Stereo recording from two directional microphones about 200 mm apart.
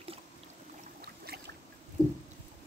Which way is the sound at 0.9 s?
50° right (ahead or behind).